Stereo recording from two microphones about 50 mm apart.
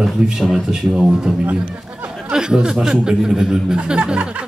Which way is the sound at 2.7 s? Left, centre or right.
Centre.